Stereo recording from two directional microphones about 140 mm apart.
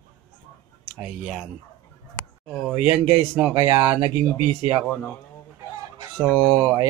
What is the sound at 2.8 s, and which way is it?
Speech, 15° right (ahead or behind).